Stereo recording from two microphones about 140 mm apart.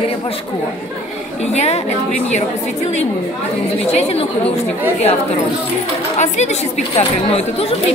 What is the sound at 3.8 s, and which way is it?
Speech, 50° left (ahead or behind).